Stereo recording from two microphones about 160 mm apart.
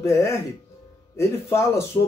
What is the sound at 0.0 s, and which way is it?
Speech, 20° left (ahead or behind).